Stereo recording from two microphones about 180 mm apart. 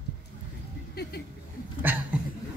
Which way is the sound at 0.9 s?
60° left (ahead or behind).